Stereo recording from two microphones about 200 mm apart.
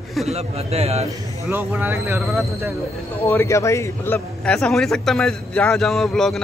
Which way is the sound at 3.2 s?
10° left (ahead or behind).